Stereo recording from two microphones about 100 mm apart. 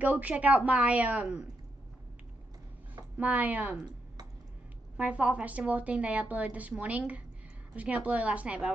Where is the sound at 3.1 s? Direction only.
15° right (ahead or behind).